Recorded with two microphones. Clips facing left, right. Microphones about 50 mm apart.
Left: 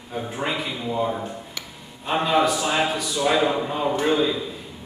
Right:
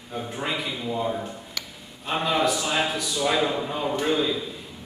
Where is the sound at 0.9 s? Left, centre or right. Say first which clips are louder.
Left 4 dB; centre.